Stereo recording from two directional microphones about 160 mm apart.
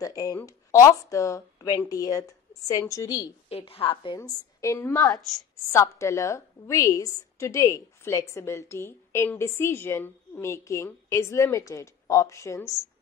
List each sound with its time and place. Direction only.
0.0 s a woman's voice: 20° left (ahead or behind)
3.4 s a woman's voice: 35° left (ahead or behind)
4.2 s a woman's voice: 20° left (ahead or behind)